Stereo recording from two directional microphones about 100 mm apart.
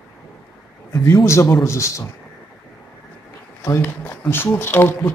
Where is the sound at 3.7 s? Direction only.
20° left (ahead or behind).